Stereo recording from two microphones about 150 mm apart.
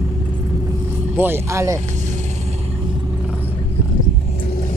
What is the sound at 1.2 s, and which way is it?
Speech, 15° right (ahead or behind).